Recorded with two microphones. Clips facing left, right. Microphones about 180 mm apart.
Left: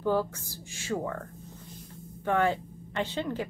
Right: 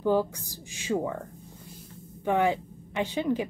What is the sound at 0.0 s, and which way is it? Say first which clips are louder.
Speech: right 3 dB; 15° right (ahead or behind).